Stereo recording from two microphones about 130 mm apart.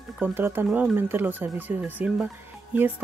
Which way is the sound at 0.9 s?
15° right (ahead or behind).